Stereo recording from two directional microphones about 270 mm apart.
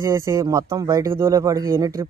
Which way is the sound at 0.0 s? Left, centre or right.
Centre.